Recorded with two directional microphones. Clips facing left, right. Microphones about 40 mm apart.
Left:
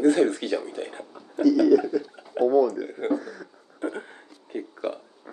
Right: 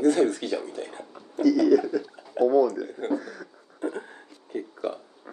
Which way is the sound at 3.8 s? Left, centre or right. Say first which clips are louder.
Even; left.